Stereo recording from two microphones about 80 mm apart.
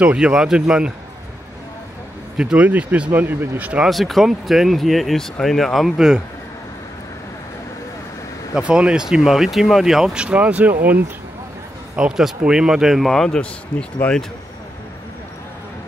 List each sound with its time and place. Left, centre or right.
0.0 s speech: centre
2.3 s speech: centre
3.8 s speech: centre
8.5 s speech: centre
13.4 s speech: centre